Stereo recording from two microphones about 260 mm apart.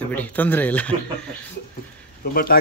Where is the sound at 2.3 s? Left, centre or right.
Left.